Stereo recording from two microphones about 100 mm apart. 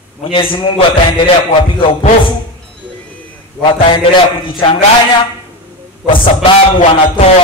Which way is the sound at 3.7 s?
70° left (ahead or behind).